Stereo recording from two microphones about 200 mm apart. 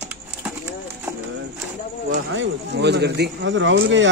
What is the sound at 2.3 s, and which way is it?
Speech, 55° right (ahead or behind).